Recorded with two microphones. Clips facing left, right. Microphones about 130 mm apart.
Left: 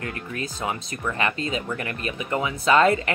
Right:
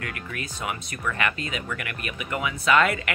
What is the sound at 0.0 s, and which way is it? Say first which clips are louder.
A woman's voice: left 3 dB; 30° left (ahead or behind).